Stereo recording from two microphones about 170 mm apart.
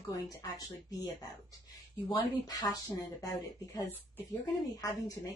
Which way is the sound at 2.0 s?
25° left (ahead or behind).